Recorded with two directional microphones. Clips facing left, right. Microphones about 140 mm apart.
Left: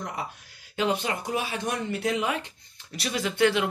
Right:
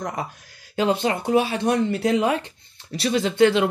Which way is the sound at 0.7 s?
30° right (ahead or behind).